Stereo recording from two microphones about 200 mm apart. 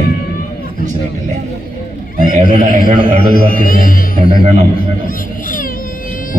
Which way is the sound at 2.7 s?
45° right (ahead or behind).